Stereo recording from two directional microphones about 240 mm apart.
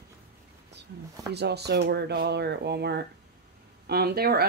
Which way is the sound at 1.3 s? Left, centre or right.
Right.